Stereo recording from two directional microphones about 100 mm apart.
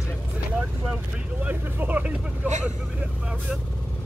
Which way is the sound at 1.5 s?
15° right (ahead or behind).